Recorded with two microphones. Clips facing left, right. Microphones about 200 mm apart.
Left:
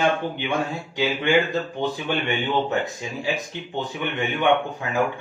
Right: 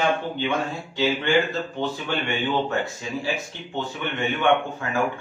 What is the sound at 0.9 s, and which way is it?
Speech, 15° left (ahead or behind).